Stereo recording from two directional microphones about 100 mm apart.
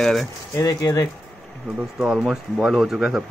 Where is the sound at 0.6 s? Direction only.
40° left (ahead or behind).